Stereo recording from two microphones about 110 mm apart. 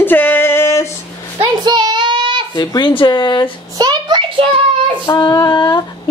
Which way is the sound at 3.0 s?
45° left (ahead or behind).